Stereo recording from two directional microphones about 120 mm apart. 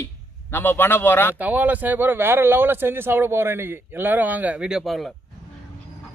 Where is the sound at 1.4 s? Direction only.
15° right (ahead or behind).